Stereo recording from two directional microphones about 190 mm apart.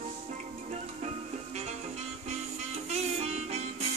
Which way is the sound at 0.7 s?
35° right (ahead or behind).